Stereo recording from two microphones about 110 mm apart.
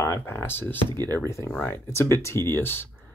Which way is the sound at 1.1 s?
25° left (ahead or behind).